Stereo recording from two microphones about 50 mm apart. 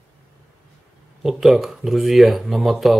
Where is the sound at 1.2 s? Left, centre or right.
Centre.